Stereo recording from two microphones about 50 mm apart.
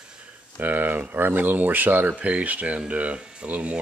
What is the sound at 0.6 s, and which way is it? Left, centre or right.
Speech, right.